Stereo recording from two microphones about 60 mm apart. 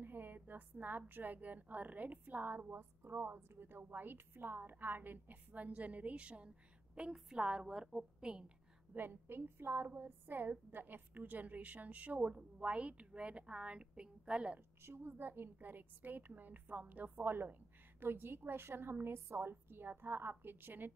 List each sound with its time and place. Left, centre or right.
0.0 s a woman's voice: right; by 8.5 s centre
8.9 s a woman's voice: right; by 14.6 s centre
14.8 s a woman's voice: right
19.5 s a woman's voice: right